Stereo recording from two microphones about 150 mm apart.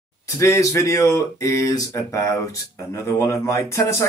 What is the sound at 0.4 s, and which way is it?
Speech, 20° left (ahead or behind).